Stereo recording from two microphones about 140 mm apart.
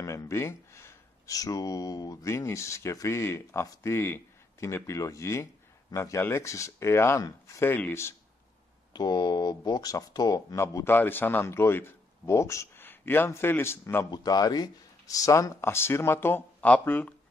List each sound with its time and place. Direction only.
0.0 s speech: 20° left (ahead or behind)
8.9 s speech: 30° left (ahead or behind)
14.1 s speech: 30° left (ahead or behind); by 17.1 s 10° left (ahead or behind)